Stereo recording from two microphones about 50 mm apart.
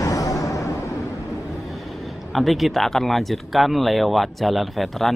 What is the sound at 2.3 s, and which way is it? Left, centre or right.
Speech, centre.